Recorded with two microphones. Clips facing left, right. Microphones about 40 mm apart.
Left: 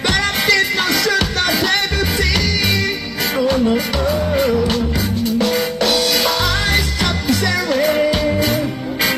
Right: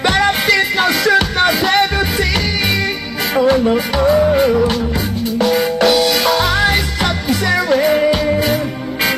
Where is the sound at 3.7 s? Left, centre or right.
Centre.